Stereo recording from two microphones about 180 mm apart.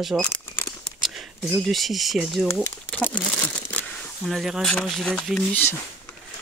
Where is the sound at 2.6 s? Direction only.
10° left (ahead or behind).